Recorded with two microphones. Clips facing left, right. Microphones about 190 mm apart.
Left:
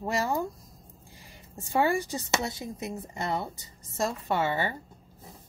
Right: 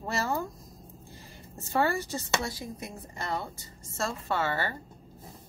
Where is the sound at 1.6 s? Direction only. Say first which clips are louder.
Left 2 dB; 15° left (ahead or behind).